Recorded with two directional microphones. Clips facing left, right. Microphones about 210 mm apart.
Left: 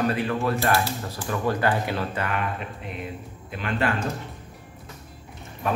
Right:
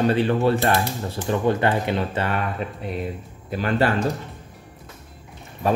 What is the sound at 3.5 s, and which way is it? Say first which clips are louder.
Speech: right 6 dB; 40° right (ahead or behind).